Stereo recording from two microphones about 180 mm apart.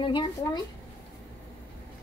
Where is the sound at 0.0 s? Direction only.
25° left (ahead or behind).